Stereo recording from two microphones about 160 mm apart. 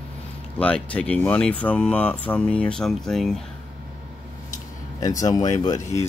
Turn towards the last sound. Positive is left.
turn(degrees=20)  # may be behind; listen again after turning